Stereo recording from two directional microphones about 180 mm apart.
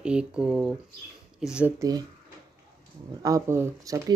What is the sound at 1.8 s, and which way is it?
Speech, 20° right (ahead or behind).